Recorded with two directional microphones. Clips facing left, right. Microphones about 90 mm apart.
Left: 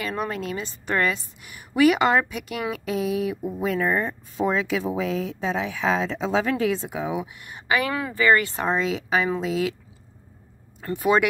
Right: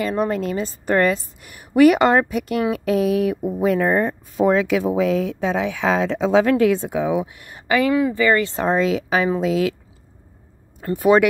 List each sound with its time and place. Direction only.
0.0 s a woman's voice: 35° right (ahead or behind); by 7.4 s 50° right (ahead or behind)
8.4 s a woman's voice: 30° right (ahead or behind); by 9.8 s 55° right (ahead or behind)
10.8 s a woman's voice: 45° right (ahead or behind)